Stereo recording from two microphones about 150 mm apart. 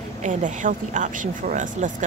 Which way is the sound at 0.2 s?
60° right (ahead or behind).